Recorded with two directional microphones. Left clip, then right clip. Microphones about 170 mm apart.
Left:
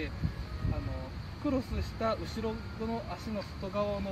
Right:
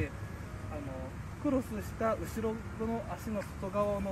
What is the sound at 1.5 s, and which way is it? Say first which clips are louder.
Speech: right 1 dB; centre (ahead or behind).